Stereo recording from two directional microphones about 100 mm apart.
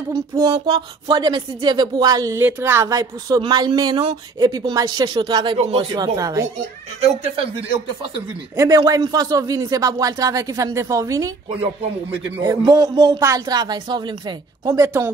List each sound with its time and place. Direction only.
0.1 s a woman's voice: 40° right (ahead or behind)
2.3 s a woman's voice: 20° right (ahead or behind); by 5.6 s 50° right (ahead or behind)
5.6 s speech: 90° right
5.9 s speech: 35° right (ahead or behind)
8.5 s speech: 35° right (ahead or behind)
12.6 s a woman's voice: 40° right (ahead or behind)
14.7 s speech: 30° right (ahead or behind)